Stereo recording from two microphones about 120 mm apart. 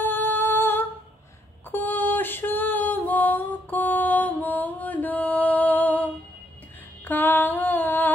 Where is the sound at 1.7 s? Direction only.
15° left (ahead or behind).